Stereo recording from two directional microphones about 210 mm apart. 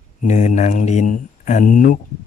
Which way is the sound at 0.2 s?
35° left (ahead or behind).